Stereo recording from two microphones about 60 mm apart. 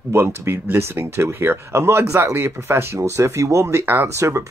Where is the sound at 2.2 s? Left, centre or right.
Right.